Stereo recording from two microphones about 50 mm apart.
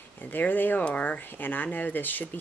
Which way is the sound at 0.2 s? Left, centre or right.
Left.